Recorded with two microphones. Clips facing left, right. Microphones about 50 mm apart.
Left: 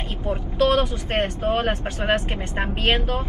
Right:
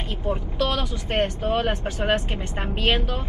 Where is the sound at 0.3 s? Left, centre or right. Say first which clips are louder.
Left 5 dB; left.